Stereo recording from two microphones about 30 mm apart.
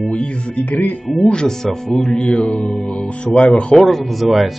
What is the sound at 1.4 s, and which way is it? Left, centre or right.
Speech, centre.